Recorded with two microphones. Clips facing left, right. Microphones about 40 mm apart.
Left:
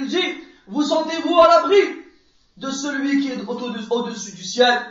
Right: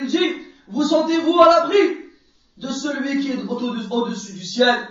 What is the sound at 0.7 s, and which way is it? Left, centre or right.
Speech, left.